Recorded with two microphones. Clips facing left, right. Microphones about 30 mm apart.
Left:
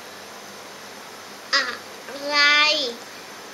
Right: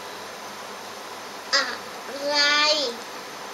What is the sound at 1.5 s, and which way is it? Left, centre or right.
Duck, centre.